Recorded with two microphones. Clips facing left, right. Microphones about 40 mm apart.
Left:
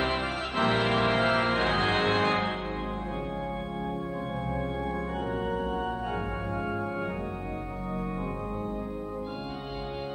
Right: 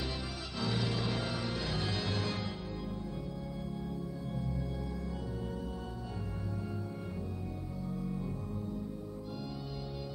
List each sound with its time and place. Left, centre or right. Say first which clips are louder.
0.0 s music: left 11 dB; left